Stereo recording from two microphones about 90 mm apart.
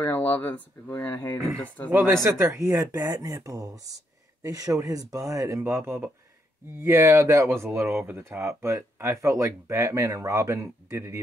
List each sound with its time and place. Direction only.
0.0 s speech: 25° left (ahead or behind)
1.9 s speech: 30° right (ahead or behind)
5.6 s speech: 25° right (ahead or behind)
8.3 s speech: 30° right (ahead or behind)